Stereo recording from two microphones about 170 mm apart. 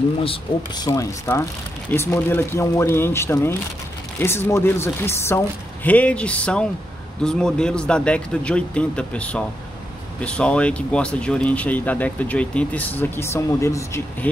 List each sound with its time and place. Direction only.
0.2 s speech: 30° left (ahead or behind)